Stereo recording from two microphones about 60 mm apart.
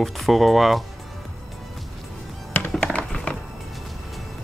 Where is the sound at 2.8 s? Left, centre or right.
Centre.